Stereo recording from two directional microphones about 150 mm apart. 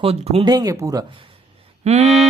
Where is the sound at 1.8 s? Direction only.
45° right (ahead or behind).